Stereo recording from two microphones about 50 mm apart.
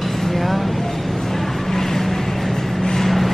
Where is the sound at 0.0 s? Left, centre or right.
Centre.